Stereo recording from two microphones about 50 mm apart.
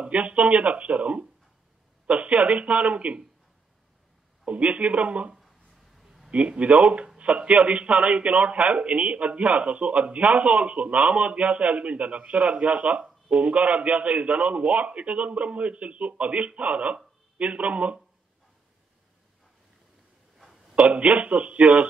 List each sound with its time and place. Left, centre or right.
0.0 s a man's voice: right
4.5 s a man's voice: right
5.9 s a sound: centre
6.3 s a man's voice: right
20.7 s a man's voice: right